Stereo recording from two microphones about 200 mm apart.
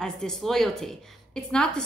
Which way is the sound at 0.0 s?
Centre (ahead or behind).